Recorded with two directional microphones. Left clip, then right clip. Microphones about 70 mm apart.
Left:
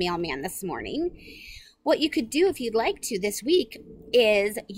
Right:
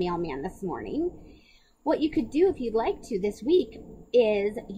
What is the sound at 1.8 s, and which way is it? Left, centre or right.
A woman's voice, left.